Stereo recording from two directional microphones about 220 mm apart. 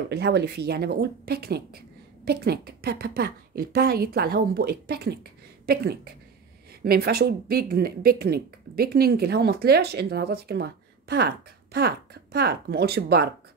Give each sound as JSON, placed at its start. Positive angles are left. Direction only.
{"t": 0.1, "sound": "speech", "side_deg": -50}
{"t": 6.7, "sound": "speech", "side_deg": -45}